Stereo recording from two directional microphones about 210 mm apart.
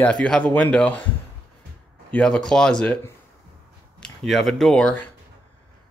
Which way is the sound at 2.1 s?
5° left (ahead or behind).